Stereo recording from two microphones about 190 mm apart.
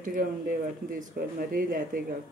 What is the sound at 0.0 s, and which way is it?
Speech, 45° right (ahead or behind).